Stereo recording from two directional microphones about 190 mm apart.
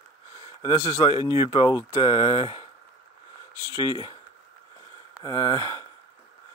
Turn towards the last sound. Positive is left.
turn(degrees=20)  # may be behind; listen again after turning